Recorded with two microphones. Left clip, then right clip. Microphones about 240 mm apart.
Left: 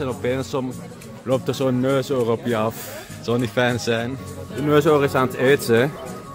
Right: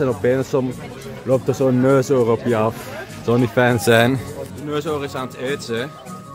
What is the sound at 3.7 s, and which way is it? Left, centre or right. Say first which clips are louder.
Speech: right 9 dB; centre.